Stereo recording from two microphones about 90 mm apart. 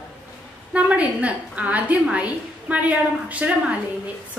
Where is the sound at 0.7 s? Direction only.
15° right (ahead or behind).